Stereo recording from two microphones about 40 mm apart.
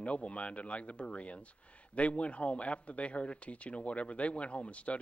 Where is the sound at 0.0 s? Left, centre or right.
Left.